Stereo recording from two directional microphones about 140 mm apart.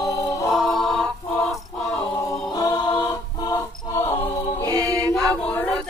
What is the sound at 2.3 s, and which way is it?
Music, 25° left (ahead or behind).